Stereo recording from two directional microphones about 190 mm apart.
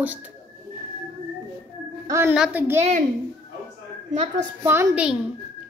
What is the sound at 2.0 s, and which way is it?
Speech, 15° right (ahead or behind).